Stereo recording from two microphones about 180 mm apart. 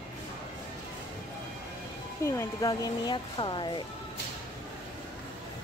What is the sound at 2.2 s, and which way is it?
Speech, 15° left (ahead or behind).